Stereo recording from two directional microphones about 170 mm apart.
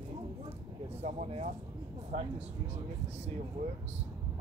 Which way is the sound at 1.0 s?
40° right (ahead or behind).